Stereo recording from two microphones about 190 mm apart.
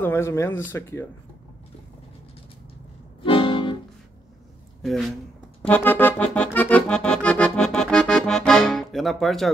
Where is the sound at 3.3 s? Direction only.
25° left (ahead or behind).